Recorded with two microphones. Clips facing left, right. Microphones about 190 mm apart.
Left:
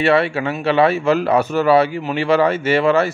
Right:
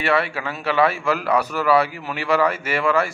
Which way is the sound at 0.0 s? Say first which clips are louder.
Left 6 dB; 25° left (ahead or behind).